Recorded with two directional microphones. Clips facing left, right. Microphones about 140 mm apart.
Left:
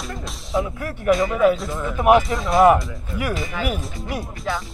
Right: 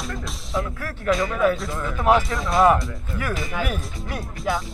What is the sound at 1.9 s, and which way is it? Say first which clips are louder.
Speech: left 4 dB; 20° left (ahead or behind).